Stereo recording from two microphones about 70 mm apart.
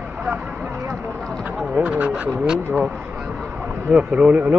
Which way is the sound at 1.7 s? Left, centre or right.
Right.